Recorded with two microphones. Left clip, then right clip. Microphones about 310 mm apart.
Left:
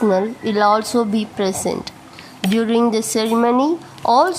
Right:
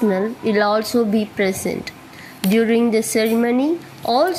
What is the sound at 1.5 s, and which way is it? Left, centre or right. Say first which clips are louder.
Speech: left 2 dB; left.